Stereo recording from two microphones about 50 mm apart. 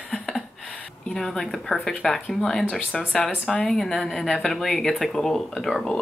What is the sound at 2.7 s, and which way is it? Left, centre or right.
Speech, left.